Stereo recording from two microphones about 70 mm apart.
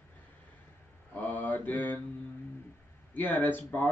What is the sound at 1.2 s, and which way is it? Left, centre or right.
Speech, left.